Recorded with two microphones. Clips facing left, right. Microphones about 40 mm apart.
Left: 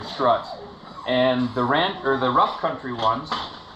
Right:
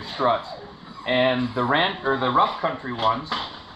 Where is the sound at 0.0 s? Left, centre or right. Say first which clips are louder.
Left 2 dB; right.